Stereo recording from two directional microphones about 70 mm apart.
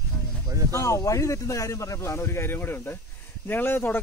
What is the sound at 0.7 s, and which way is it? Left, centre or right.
A man's voice, left.